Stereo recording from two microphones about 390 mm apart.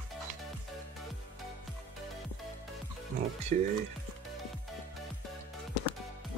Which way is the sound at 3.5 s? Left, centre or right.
Centre.